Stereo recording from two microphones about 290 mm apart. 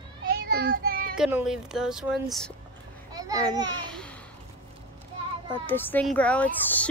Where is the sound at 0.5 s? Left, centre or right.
Right.